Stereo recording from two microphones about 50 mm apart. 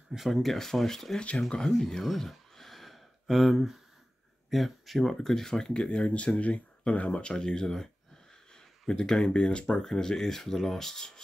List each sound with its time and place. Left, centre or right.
0.1 s speech: centre